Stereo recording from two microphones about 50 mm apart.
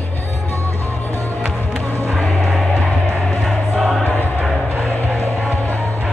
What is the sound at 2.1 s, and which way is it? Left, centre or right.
Music, centre.